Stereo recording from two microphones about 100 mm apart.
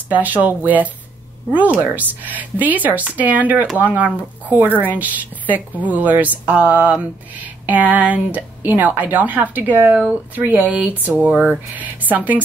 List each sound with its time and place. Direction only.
0.1 s a woman's voice: 15° right (ahead or behind)